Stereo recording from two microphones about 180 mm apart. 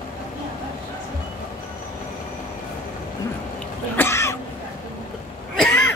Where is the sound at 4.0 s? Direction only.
15° left (ahead or behind).